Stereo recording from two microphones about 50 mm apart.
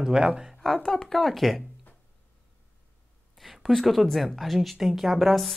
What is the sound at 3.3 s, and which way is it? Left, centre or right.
A woman's voice, centre.